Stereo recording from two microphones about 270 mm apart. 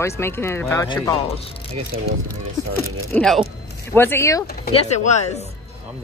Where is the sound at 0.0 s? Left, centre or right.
Centre.